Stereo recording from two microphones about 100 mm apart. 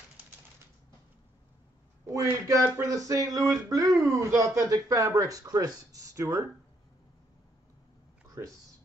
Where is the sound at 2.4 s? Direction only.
30° right (ahead or behind).